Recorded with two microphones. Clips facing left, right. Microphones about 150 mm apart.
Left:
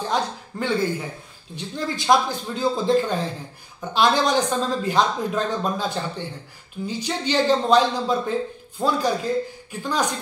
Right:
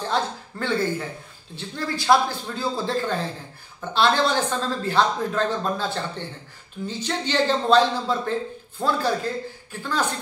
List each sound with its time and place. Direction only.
0.1 s speech: 15° left (ahead or behind)